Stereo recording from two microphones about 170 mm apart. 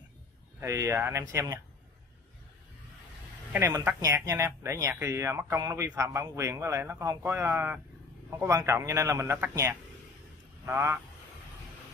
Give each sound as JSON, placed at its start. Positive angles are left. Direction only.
{"t": 0.6, "sound": "speech", "side_deg": -15}
{"t": 3.5, "sound": "speech", "side_deg": -15}